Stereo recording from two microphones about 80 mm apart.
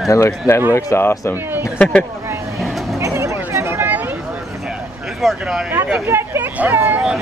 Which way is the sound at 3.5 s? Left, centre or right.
Right.